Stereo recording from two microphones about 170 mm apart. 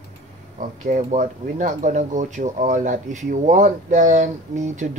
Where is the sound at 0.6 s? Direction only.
45° right (ahead or behind).